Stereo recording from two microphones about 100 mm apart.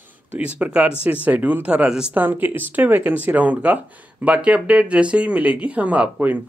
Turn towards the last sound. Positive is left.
turn(degrees=-15)  # may be behind; listen again after turning